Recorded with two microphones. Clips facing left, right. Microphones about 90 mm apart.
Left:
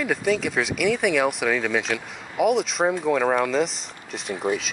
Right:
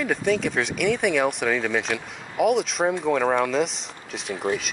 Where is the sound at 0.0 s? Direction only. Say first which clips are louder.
Even; centre (ahead or behind).